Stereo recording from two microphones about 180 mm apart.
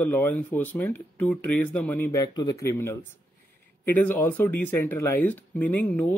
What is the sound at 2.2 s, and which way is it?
A man's voice, 20° left (ahead or behind).